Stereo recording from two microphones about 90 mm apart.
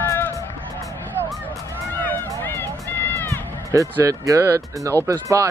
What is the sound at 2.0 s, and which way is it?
Run, 25° left (ahead or behind).